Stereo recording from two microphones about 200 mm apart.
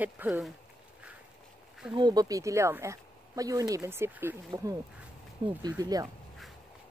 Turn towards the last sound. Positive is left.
turn(degrees=-15)  # may be behind; listen again after turning